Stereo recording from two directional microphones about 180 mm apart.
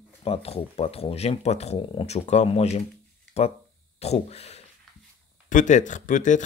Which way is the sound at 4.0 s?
35° left (ahead or behind).